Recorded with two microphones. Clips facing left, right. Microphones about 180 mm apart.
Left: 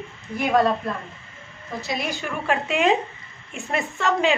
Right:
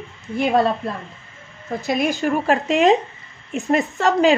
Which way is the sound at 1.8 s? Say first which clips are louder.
Right 9 dB; 50° right (ahead or behind).